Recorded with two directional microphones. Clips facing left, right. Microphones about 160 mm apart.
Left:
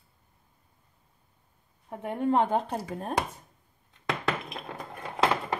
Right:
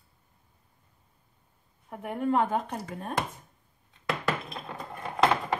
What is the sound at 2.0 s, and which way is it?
A woman's voice, 25° left (ahead or behind).